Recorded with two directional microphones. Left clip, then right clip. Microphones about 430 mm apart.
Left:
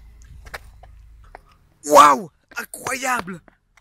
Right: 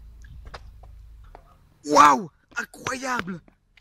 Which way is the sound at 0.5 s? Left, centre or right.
Left.